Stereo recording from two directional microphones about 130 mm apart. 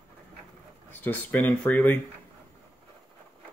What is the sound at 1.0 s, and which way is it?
Speech, 10° left (ahead or behind).